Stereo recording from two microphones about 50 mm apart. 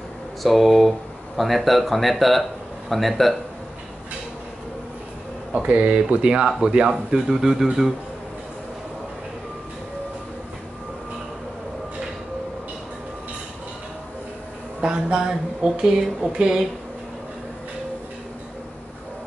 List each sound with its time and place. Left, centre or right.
0.4 s speech: centre
5.5 s speech: right
7.2 s speech: centre
14.8 s speech: centre